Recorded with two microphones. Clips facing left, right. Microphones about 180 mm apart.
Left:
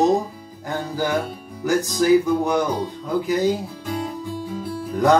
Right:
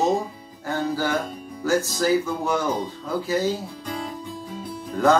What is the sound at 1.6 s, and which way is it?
Mantra, 15° left (ahead or behind).